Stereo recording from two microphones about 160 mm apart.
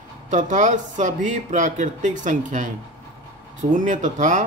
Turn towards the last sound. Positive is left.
turn(degrees=-50)  # may be behind; listen again after turning